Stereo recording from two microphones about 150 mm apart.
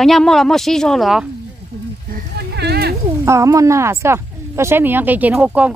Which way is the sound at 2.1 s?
90° right.